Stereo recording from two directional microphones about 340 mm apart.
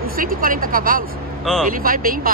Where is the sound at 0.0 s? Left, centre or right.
Right.